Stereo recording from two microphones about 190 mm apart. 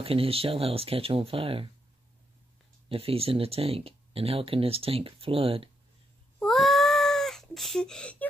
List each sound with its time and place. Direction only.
0.0 s speech: 30° right (ahead or behind)
2.9 s speech: 30° right (ahead or behind)
6.4 s cat: centre (ahead or behind)